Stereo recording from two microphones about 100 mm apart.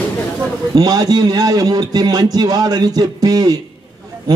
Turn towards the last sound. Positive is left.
turn(degrees=-40)  # may be behind; listen again after turning